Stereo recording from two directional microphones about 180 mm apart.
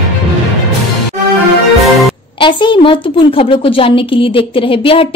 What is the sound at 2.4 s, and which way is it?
A woman's voice, 25° left (ahead or behind).